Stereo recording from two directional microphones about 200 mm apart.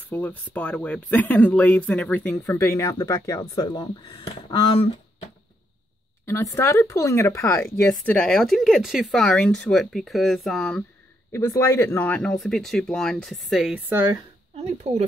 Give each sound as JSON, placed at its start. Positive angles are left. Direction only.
{"t": 0.0, "sound": "speech", "side_deg": 10}
{"t": 6.2, "sound": "speech", "side_deg": 15}
{"t": 11.3, "sound": "speech", "side_deg": 15}
{"t": 14.6, "sound": "speech", "side_deg": -35}